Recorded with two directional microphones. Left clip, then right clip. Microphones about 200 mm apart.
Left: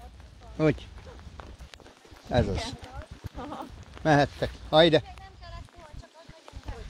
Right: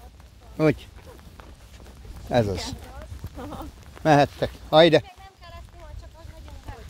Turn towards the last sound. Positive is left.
turn(degrees=-40)  # may be behind; listen again after turning